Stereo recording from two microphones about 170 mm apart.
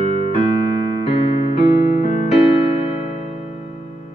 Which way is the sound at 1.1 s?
35° left (ahead or behind).